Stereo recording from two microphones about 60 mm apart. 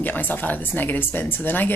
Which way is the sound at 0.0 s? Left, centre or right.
Left.